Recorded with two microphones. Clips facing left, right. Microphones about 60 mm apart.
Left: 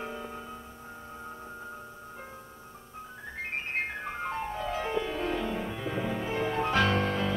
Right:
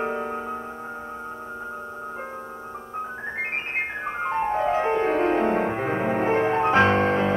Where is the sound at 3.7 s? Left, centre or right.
Right.